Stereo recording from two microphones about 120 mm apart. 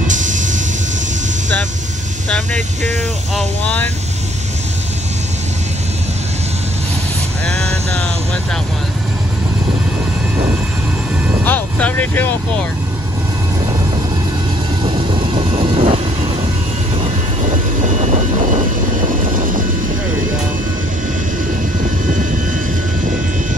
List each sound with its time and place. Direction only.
0.0 s train: 90° right
2.2 s vehicle: 5° left (ahead or behind)
3.3 s speech: 10° left (ahead or behind)
7.4 s a sound: 5° left (ahead or behind)
11.4 s speech: 15° left (ahead or behind)
14.8 s vehicle: 45° right (ahead or behind)
17.8 s vehicle: 90° right